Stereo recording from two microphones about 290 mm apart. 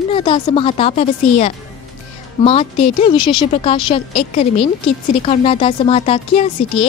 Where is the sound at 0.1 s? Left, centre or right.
Centre.